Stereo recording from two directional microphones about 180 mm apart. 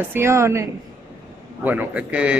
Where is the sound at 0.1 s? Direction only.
15° right (ahead or behind).